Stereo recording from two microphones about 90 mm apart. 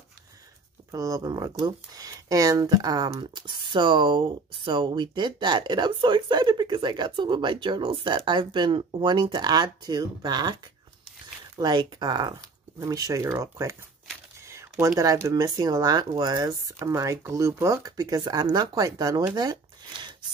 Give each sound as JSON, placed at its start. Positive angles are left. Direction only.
{"t": 0.9, "sound": "speech", "side_deg": -40}
{"t": 11.5, "sound": "speech", "side_deg": -55}
{"t": 12.7, "sound": "speech", "side_deg": -40}